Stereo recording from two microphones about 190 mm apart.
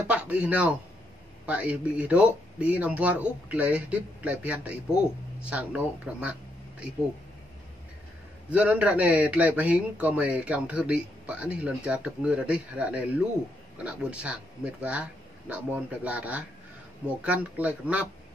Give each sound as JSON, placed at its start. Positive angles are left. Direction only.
{"t": 0.0, "sound": "a man's voice", "side_deg": -5}
{"t": 8.5, "sound": "a man's voice", "side_deg": -5}